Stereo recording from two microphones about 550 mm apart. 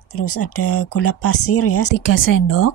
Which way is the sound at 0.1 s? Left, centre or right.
Left.